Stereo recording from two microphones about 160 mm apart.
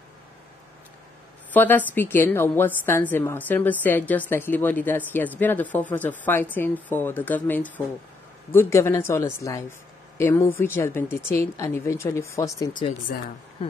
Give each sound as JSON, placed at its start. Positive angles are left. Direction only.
{"t": 1.5, "sound": "a woman's voice", "side_deg": 10}
{"t": 13.1, "sound": "speech", "side_deg": 65}
{"t": 13.6, "sound": "a sound", "side_deg": 35}